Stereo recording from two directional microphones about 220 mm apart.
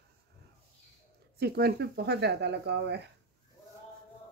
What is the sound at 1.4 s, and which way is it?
Speech, 45° right (ahead or behind).